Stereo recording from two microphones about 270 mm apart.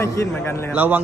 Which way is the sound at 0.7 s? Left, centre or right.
Centre.